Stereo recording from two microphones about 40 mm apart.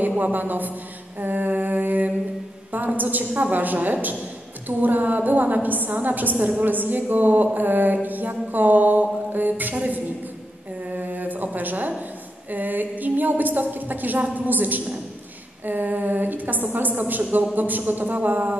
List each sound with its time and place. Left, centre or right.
0.2 s a woman's voice: right
10.9 s mantra: right
11.5 s a woman's voice: right